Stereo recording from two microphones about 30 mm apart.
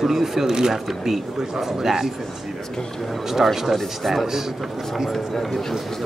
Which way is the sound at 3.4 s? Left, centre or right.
Centre.